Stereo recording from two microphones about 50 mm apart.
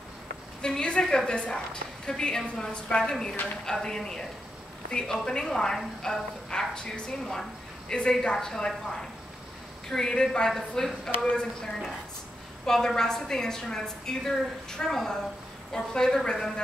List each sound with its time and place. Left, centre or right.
0.6 s a woman's voice: centre